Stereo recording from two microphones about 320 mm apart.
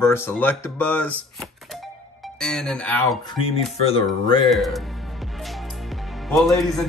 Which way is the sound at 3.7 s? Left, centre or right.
Centre.